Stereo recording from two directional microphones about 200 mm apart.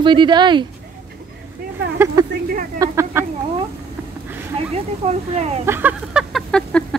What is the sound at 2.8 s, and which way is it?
Speech, 15° right (ahead or behind).